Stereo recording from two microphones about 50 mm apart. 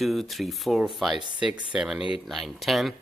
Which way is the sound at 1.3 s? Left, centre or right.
Centre.